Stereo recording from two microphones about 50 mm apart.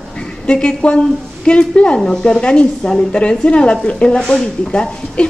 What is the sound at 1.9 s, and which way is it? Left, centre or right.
A woman's voice, centre.